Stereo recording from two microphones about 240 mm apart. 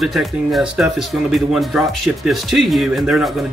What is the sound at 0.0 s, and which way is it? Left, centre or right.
Speech, centre.